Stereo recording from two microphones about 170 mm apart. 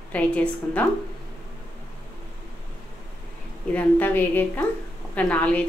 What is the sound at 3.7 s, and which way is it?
A woman's voice, 10° left (ahead or behind).